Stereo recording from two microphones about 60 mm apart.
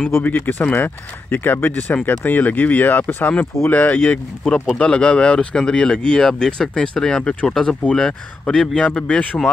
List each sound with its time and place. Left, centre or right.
0.2 s speech: left
4.7 s speech: centre